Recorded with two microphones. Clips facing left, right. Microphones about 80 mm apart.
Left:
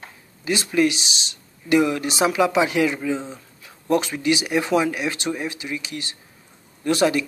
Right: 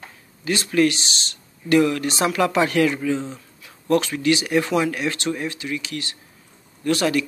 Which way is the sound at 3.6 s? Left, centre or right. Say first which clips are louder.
Right 1 dB; centre.